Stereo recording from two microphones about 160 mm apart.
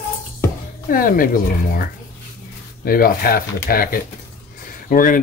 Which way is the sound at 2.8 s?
65° left (ahead or behind).